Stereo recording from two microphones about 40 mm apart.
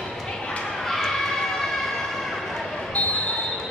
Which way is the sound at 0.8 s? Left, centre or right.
Centre.